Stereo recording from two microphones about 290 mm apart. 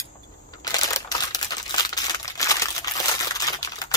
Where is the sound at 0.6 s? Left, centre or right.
Centre.